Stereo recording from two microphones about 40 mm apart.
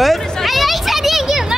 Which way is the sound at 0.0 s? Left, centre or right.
Centre.